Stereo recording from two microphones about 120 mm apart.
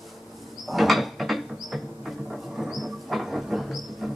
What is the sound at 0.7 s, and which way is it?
Mechanisms, centre (ahead or behind).